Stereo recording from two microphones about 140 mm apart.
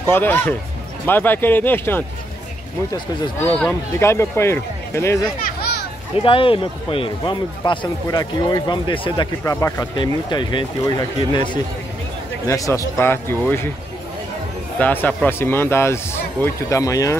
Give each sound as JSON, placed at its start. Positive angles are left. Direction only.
{"t": 0.1, "sound": "speech", "side_deg": 15}
{"t": 4.0, "sound": "speech", "side_deg": 20}
{"t": 6.1, "sound": "speech", "side_deg": 40}
{"t": 9.4, "sound": "speech", "side_deg": 20}
{"t": 9.9, "sound": "speech", "side_deg": 35}
{"t": 12.4, "sound": "speech", "side_deg": 25}
{"t": 14.8, "sound": "speech", "side_deg": 10}